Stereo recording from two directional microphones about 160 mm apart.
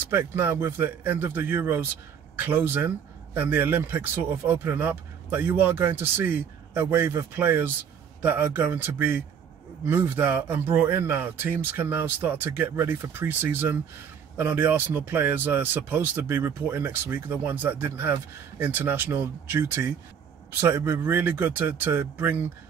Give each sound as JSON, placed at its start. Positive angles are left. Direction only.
{"t": 0.1, "sound": "speech", "side_deg": -15}